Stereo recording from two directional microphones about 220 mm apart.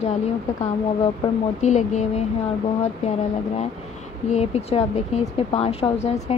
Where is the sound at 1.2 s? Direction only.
25° left (ahead or behind).